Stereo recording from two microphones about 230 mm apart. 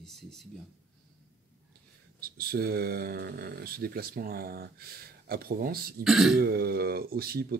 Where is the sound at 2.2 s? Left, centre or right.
Right.